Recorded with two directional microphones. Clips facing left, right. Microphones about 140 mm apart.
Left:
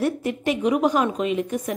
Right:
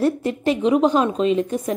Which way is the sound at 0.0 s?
30° right (ahead or behind).